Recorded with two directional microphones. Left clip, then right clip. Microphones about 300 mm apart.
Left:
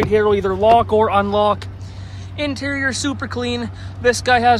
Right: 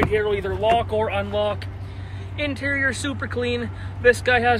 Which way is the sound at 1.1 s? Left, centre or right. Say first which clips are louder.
Left 8 dB; centre.